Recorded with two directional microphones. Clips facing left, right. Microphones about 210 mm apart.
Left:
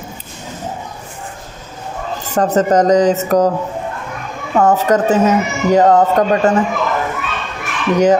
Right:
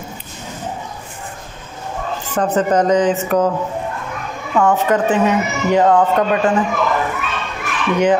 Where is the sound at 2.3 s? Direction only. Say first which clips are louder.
Left 3 dB; 40° left (ahead or behind).